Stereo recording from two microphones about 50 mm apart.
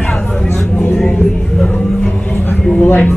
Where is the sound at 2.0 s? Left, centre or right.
Left.